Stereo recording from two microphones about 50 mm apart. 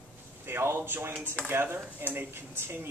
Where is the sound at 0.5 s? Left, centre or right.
Right.